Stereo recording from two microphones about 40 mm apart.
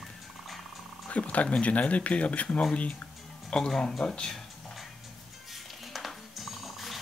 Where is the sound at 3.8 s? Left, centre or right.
Centre.